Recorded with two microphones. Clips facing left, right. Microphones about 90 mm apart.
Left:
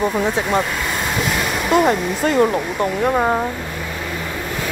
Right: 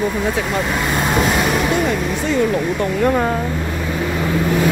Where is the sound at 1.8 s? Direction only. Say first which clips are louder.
Left 2 dB; 40° left (ahead or behind).